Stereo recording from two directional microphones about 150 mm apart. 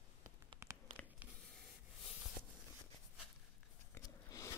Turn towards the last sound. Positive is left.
turn(degrees=20)  # may be behind; listen again after turning